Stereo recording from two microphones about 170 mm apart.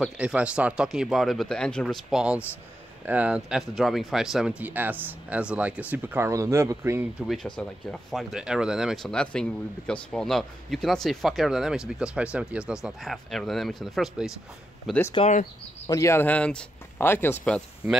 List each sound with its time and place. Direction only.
0.0 s speech: 5° right (ahead or behind)
7.2 s speech: centre (ahead or behind)
15.1 s speech: 40° left (ahead or behind)
15.9 s speech: 15° left (ahead or behind)